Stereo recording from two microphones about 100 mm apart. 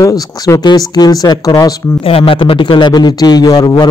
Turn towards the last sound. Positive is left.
turn(degrees=45)  # may be behind; listen again after turning